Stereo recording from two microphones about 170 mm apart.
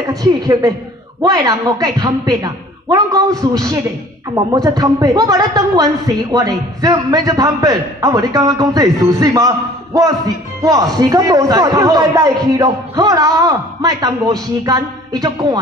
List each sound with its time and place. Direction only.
0.0 s a man's voice: 20° right (ahead or behind)
10.6 s a man's voice: 20° right (ahead or behind)